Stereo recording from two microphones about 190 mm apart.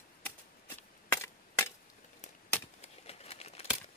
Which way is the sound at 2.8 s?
35° left (ahead or behind).